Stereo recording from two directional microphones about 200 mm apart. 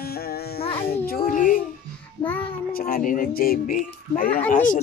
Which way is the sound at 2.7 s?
45° left (ahead or behind).